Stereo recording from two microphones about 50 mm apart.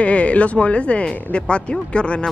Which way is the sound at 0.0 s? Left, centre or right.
Left.